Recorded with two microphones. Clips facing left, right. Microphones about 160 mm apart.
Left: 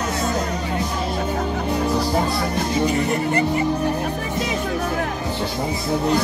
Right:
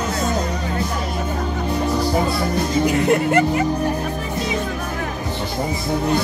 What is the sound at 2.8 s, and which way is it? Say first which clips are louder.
Speech: right 4 dB; 85° right.